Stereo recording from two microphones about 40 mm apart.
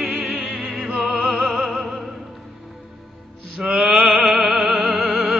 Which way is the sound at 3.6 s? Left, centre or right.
Centre.